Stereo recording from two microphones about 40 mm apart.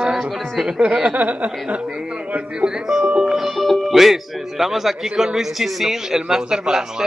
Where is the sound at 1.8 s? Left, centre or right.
Right.